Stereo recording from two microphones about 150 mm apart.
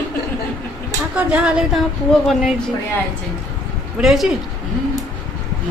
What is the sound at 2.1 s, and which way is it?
Speech, 5° left (ahead or behind).